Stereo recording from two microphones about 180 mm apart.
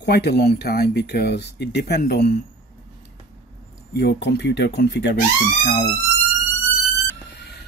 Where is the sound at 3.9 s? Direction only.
70° left (ahead or behind).